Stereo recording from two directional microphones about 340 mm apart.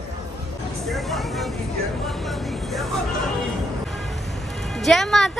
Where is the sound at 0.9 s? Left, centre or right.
Centre.